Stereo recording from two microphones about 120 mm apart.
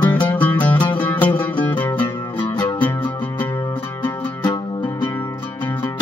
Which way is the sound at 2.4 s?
45° left (ahead or behind).